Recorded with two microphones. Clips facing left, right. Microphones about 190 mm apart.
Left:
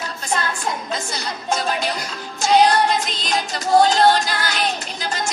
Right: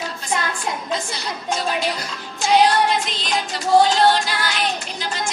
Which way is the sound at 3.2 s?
40° left (ahead or behind).